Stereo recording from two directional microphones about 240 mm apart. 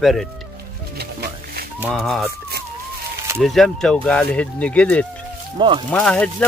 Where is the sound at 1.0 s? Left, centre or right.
Right.